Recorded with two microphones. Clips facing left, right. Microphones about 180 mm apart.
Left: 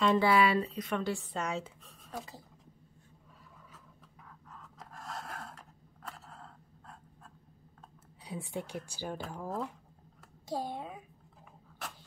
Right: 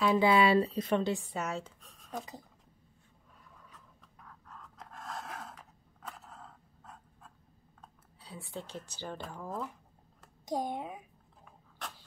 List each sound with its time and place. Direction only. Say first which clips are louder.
0.2 s speech: right 2 dB; 25° right (ahead or behind)
1.1 s speech: even; 5° right (ahead or behind)
1.6 s a sound: left 1 dB; 5° left (ahead or behind)
3.7 s a sound: left 2 dB; 5° left (ahead or behind)
8.2 s speech: left 4 dB; 15° left (ahead or behind)
10.4 s speech: right 2 dB; 15° right (ahead or behind)